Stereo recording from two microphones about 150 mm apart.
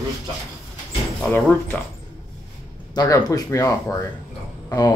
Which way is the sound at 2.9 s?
25° left (ahead or behind).